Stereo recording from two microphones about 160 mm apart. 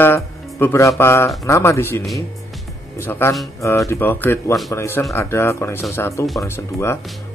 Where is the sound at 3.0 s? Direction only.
15° left (ahead or behind).